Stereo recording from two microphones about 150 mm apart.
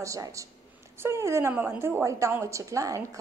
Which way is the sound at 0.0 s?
20° right (ahead or behind).